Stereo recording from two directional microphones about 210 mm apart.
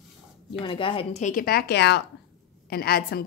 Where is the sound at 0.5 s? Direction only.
25° left (ahead or behind).